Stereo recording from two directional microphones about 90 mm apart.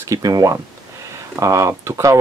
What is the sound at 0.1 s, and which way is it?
Speech, 40° right (ahead or behind).